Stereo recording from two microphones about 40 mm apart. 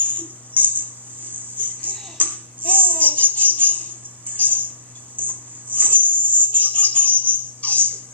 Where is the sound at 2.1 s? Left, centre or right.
Left.